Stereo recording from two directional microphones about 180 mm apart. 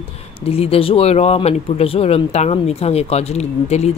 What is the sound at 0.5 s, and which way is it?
Speech, 30° left (ahead or behind).